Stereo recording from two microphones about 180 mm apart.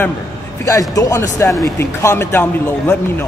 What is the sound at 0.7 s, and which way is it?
Speech, 20° left (ahead or behind).